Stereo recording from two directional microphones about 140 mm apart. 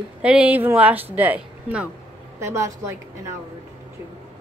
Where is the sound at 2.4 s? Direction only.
20° right (ahead or behind).